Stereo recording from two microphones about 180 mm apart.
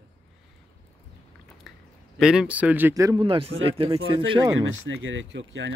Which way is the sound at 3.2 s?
30° right (ahead or behind).